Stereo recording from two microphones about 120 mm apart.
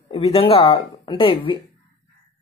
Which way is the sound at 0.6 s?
40° left (ahead or behind).